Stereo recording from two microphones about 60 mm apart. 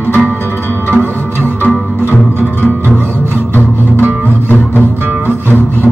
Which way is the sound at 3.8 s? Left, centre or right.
Right.